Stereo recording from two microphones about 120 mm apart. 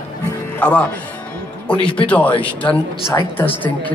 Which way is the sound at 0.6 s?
10° left (ahead or behind).